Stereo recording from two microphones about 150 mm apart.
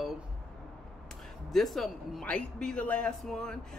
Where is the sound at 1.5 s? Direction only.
Centre (ahead or behind).